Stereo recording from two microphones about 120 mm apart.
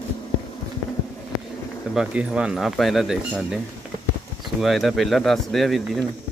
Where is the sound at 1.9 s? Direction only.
5° right (ahead or behind).